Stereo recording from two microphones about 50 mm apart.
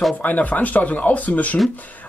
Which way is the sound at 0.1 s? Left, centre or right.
Left.